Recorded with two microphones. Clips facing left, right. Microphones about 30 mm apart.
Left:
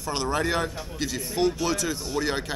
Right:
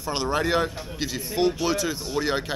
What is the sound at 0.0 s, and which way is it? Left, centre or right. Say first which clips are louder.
Speech: right 1 dB; centre.